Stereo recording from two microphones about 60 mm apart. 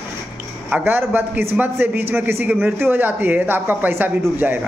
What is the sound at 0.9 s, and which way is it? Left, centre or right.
A man's voice, right.